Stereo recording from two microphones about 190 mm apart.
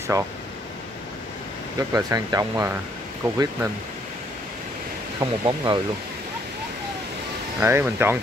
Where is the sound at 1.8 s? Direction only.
15° right (ahead or behind).